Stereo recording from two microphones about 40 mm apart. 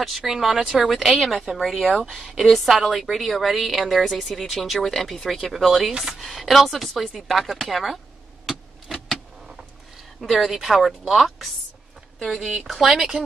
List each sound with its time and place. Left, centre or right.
0.4 s speech: centre
5.9 s speech: centre
6.2 s speech: centre
8.5 s vehicle: centre
10.2 s speech: centre